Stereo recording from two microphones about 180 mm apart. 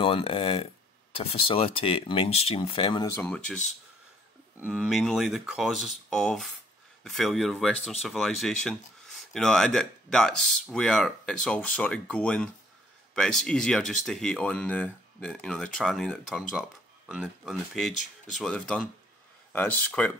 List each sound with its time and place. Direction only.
0.0 s speech: 30° left (ahead or behind)
4.6 s speech: 5° right (ahead or behind)